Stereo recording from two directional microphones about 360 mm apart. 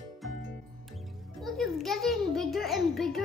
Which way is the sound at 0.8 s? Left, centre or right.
Centre.